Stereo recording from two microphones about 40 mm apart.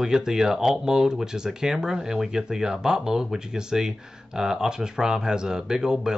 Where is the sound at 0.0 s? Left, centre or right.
Centre.